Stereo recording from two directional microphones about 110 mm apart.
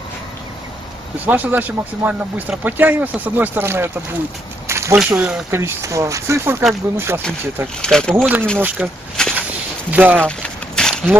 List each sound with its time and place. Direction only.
1.2 s speech: 15° right (ahead or behind)
4.6 s a sound: 25° right (ahead or behind)
4.9 s speech: 10° right (ahead or behind)
5.5 s speech: 25° right (ahead or behind)
7.8 s speech: 5° left (ahead or behind)
8.2 s speech: 15° right (ahead or behind)
9.2 s walk: 5° left (ahead or behind)
9.8 s speech: 15° right (ahead or behind)
10.8 s a sound: 5° left (ahead or behind)